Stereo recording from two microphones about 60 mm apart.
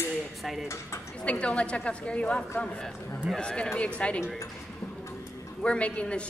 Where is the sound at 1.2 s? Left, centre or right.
Left.